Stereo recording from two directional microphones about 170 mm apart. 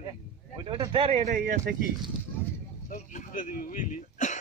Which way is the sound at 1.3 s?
50° right (ahead or behind).